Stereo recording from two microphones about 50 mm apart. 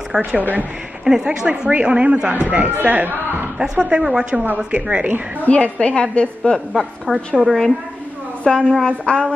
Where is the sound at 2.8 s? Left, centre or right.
Right.